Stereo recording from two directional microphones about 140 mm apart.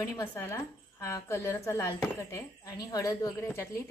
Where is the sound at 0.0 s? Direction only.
25° left (ahead or behind).